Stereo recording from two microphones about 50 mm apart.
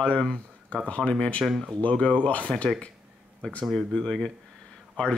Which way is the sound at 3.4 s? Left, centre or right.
Left.